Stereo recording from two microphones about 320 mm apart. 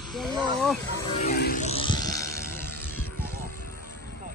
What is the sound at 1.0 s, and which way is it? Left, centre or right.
Snake, centre.